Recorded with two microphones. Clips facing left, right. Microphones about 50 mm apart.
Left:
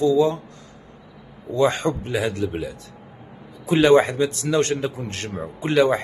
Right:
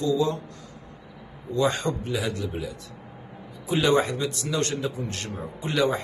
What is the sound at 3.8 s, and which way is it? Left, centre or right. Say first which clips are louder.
A man's voice: left 7 dB; left.